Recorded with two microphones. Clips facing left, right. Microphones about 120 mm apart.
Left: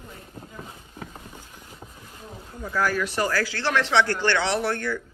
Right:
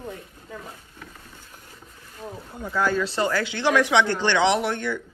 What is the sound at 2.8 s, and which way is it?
Speech, 25° right (ahead or behind).